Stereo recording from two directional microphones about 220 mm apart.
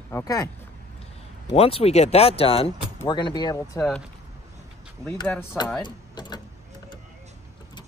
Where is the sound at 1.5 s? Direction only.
25° left (ahead or behind).